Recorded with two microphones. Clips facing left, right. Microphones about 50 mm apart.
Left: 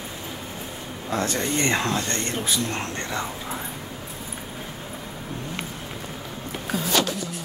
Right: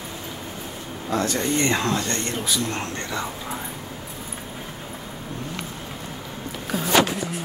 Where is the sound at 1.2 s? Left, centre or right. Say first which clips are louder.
Right 1 dB; left.